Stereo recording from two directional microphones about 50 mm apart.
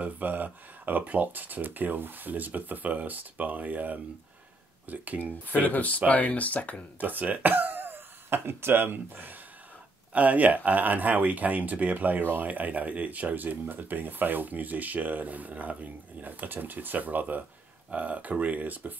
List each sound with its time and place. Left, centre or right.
0.0 s speech: right
5.2 s speech: left
7.0 s speech: right
12.4 s speech: right